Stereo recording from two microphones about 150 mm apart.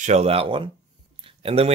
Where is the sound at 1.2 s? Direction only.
40° right (ahead or behind).